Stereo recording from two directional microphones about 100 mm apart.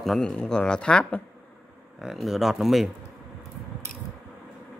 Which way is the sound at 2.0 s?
Centre (ahead or behind).